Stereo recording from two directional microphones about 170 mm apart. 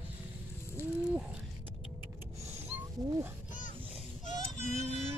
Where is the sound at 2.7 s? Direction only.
15° right (ahead or behind).